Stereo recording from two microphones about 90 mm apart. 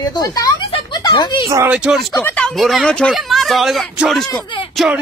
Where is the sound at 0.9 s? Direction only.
50° left (ahead or behind).